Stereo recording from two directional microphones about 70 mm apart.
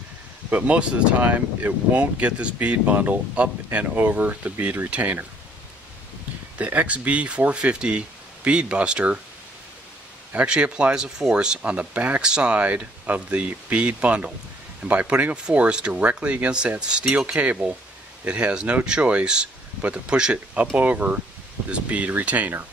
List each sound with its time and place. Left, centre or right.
0.5 s speech: centre
6.6 s speech: right
10.3 s speech: centre